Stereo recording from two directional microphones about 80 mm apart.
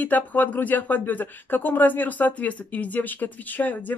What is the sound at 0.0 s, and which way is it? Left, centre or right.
Speech, left.